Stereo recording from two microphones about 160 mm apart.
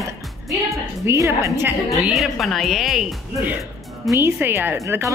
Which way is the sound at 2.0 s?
Centre (ahead or behind).